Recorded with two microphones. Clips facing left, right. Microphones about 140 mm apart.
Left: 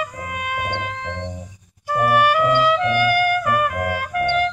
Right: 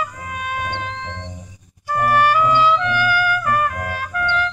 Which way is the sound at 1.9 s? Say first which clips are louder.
Even; 15° left (ahead or behind).